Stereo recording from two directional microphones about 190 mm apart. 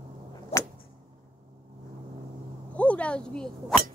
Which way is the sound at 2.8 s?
5° left (ahead or behind).